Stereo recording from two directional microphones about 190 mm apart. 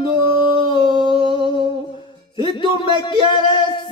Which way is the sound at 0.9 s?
25° right (ahead or behind).